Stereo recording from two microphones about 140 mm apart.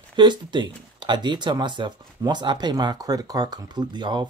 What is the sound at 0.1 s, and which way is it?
Speech, 35° right (ahead or behind).